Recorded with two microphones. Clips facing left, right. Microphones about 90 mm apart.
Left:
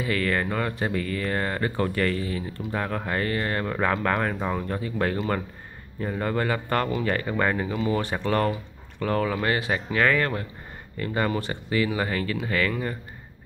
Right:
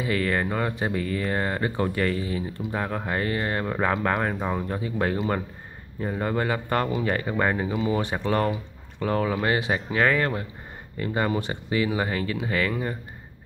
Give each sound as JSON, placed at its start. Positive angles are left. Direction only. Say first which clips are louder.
{"t": 0.0, "sound": "speech", "louder": "even", "side_deg": -20}